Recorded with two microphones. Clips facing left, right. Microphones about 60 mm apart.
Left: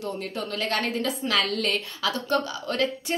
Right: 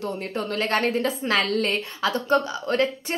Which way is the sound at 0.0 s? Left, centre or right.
Right.